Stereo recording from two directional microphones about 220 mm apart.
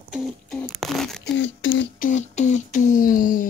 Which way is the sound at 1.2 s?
60° left (ahead or behind).